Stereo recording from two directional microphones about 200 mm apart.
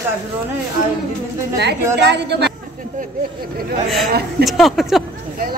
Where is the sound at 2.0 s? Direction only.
55° right (ahead or behind).